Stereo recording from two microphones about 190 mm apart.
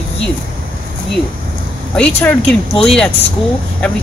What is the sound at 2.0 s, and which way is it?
Speech, 5° left (ahead or behind).